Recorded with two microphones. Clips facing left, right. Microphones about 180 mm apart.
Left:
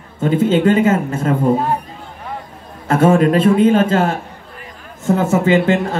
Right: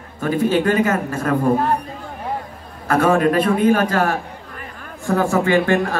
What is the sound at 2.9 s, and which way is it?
A man's voice, 25° left (ahead or behind).